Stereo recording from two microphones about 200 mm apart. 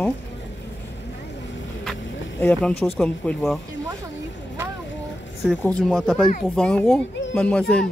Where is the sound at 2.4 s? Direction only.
5° left (ahead or behind).